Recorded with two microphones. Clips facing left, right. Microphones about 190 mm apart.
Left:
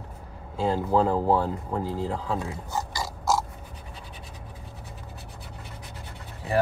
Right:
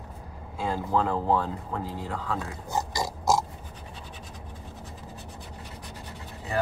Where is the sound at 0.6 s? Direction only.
30° left (ahead or behind).